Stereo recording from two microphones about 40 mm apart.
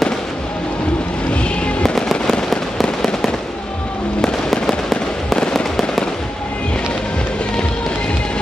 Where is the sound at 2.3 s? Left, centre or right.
Centre.